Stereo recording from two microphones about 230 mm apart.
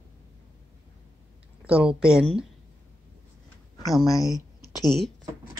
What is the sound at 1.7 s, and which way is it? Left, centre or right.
Speech, centre.